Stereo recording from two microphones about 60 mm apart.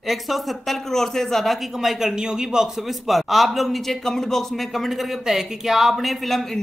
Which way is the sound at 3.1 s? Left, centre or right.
Centre.